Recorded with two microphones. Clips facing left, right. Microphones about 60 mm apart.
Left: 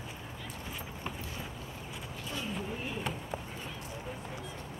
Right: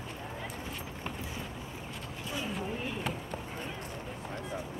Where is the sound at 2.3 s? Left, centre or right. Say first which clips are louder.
Right 2 dB; centre.